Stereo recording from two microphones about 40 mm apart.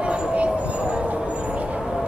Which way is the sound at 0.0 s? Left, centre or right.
Right.